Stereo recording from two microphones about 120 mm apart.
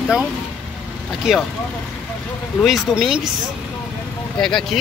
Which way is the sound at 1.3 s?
5° right (ahead or behind).